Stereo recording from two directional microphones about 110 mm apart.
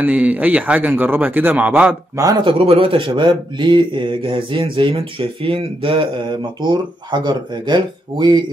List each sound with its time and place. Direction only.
0.0 s speech: 15° right (ahead or behind)
2.1 s speech: 35° right (ahead or behind)
2.6 s speech: 55° right (ahead or behind)